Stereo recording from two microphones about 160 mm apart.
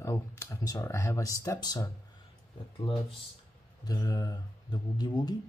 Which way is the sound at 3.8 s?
25° left (ahead or behind).